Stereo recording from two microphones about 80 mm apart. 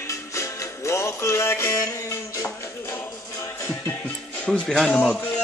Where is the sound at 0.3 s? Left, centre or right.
Left.